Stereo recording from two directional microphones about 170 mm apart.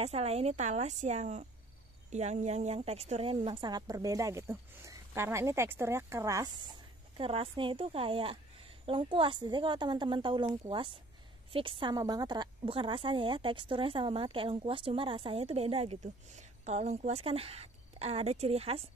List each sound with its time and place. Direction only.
0.0 s a woman's voice: 35° right (ahead or behind); by 6.5 s 20° right (ahead or behind)
7.2 s a woman's voice: 35° right (ahead or behind)